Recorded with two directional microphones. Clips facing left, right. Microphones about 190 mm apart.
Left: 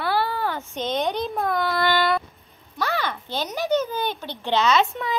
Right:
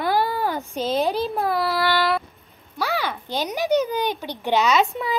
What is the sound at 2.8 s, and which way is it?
A child's voice, 10° right (ahead or behind).